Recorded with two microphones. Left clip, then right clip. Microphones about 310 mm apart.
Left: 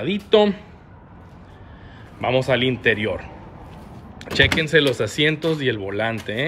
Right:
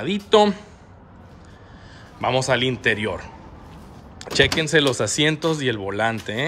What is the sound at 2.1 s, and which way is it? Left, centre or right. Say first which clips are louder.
Speech: left 1 dB; centre.